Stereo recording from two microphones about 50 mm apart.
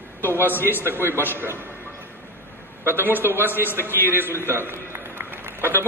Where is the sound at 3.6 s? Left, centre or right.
Left.